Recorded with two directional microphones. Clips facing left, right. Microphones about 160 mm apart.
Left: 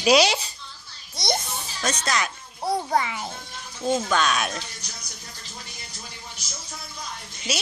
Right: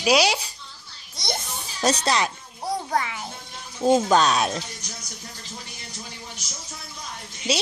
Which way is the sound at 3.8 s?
35° right (ahead or behind).